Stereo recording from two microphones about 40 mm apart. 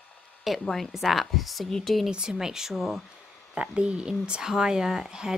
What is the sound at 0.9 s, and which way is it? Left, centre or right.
Speech, centre.